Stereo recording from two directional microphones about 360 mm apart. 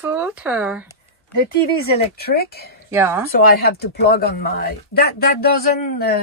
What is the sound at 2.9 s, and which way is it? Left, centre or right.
Speech, centre.